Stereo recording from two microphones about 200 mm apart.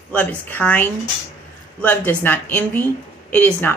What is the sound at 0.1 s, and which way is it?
A woman's voice, 10° left (ahead or behind).